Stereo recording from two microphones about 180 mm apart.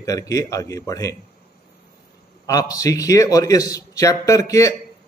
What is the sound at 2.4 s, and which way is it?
Speech, 20° left (ahead or behind).